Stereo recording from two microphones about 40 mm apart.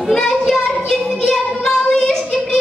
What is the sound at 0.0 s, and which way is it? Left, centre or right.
Music, centre.